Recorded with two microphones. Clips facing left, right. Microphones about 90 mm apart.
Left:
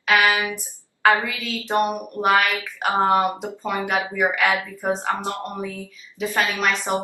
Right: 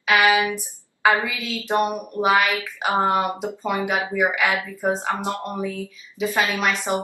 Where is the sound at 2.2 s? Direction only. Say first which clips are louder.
Even; 5° right (ahead or behind).